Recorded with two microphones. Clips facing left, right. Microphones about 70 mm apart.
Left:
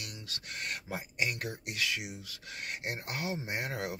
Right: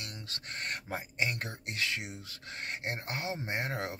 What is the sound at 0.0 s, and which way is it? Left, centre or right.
Speech, right.